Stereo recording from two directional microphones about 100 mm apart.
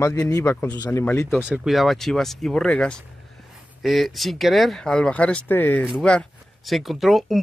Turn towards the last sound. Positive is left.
turn(degrees=0)  # may be behind; listen again after turning